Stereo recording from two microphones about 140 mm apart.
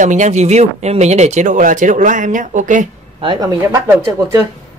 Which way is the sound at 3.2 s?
30° right (ahead or behind).